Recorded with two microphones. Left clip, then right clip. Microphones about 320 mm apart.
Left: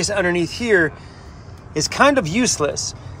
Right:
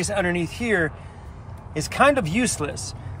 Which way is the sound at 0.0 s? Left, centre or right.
Centre.